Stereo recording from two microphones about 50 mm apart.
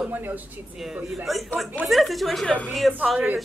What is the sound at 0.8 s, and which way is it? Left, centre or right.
A woman's voice, centre.